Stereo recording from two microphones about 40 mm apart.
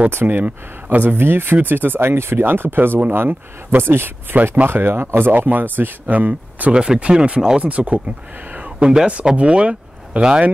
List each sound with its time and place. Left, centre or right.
0.3 s speech: right
5.3 s speech: right
6.7 s speech: right
7.6 s speech: right